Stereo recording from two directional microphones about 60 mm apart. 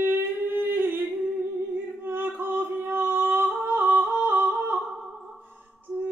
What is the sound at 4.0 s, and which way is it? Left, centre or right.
Humming, right.